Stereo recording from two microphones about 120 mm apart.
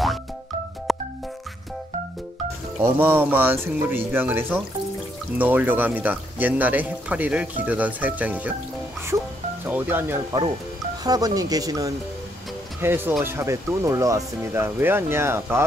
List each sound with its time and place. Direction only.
0.9 s music: centre (ahead or behind)
2.8 s a man's voice: 15° right (ahead or behind)
9.7 s a man's voice: 15° right (ahead or behind)
11.1 s speech: 30° right (ahead or behind)
12.8 s a man's voice: 15° right (ahead or behind)